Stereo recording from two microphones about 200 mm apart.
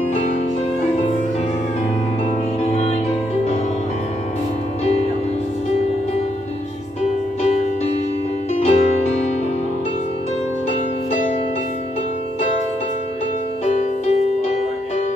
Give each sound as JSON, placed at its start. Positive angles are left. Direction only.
{"t": 2.6, "sound": "music", "side_deg": 35}
{"t": 7.0, "sound": "music", "side_deg": 35}
{"t": 13.7, "sound": "music", "side_deg": 35}